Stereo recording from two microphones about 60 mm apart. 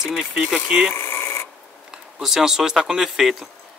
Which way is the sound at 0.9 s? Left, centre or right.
Left.